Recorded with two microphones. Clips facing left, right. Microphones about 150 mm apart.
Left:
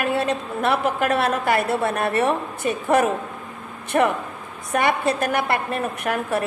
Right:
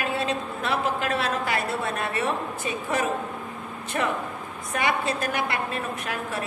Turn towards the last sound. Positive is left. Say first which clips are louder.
# left 7 dB
turn(degrees=55)  # may be behind; listen again after turning